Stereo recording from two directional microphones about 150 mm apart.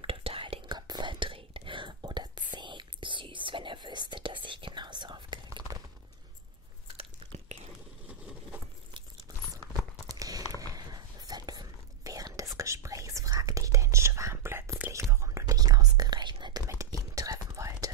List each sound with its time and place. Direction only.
0.0 s whispering: 40° right (ahead or behind)
7.0 s chewing: 45° right (ahead or behind)
10.0 s tearing: 25° right (ahead or behind)
10.6 s whispering: 25° right (ahead or behind)